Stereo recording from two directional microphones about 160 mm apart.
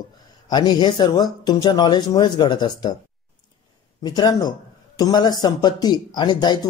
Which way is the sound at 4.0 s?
25° left (ahead or behind).